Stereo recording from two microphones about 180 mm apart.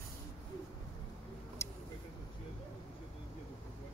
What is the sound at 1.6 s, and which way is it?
Vehicle, 15° left (ahead or behind).